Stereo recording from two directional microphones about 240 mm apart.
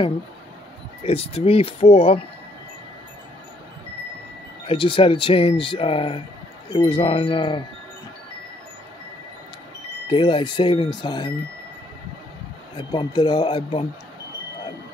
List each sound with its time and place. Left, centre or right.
1.0 s speech: left
4.6 s speech: left
10.0 s speech: left
12.7 s speech: centre